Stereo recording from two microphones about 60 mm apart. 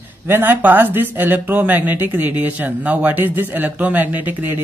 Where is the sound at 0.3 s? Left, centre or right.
Right.